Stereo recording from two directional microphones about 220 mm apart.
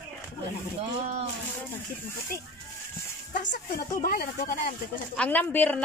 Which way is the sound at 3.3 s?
35° left (ahead or behind).